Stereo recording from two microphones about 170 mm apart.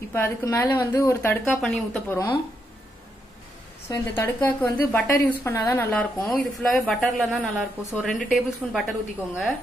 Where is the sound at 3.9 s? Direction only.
10° left (ahead or behind).